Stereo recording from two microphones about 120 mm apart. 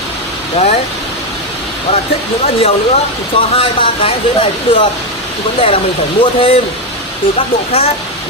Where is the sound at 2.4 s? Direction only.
55° left (ahead or behind).